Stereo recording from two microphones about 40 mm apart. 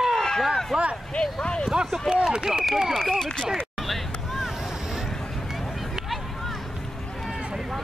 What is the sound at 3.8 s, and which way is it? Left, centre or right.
Vehicle, centre.